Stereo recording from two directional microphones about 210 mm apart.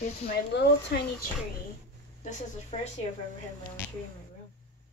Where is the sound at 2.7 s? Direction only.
30° left (ahead or behind).